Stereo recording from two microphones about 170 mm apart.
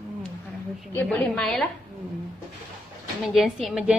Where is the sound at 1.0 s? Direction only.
5° left (ahead or behind).